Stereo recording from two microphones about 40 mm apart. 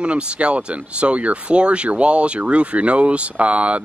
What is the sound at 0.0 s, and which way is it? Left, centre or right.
Speech, right.